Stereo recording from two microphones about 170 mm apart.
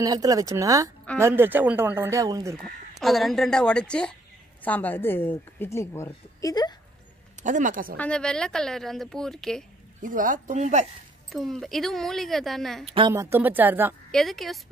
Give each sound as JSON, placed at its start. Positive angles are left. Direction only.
{"t": 0.0, "sound": "speech", "side_deg": -20}
{"t": 3.0, "sound": "a woman's voice", "side_deg": 0}
{"t": 7.4, "sound": "speech", "side_deg": -50}
{"t": 8.0, "sound": "speech", "side_deg": 5}
{"t": 10.0, "sound": "speech", "side_deg": -50}
{"t": 11.3, "sound": "speech", "side_deg": 0}
{"t": 13.1, "sound": "speech", "side_deg": -15}
{"t": 14.1, "sound": "speech", "side_deg": 0}